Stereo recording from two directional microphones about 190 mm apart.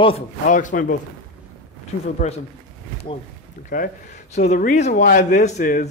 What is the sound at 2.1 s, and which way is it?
Speech, 35° left (ahead or behind).